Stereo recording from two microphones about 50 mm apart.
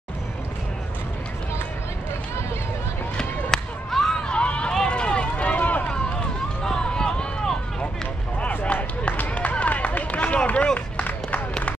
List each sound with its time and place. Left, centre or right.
3.2 s a sound: centre
4.2 s run: left
5.9 s run: centre
8.4 s run: left